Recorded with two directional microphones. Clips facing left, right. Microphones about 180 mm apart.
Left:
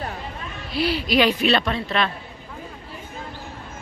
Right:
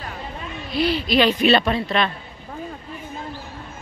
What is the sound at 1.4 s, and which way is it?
Speech, 5° right (ahead or behind).